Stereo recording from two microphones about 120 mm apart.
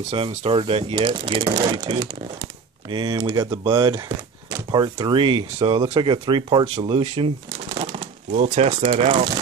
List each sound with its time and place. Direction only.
0.1 s speech: 50° right (ahead or behind)
4.5 s speech: 35° right (ahead or behind)
6.6 s speech: 50° right (ahead or behind)
8.3 s speech: 75° right (ahead or behind)
8.6 s speech: 55° right (ahead or behind)